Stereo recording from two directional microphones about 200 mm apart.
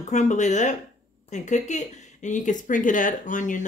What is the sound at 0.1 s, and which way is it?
Speech, 35° left (ahead or behind).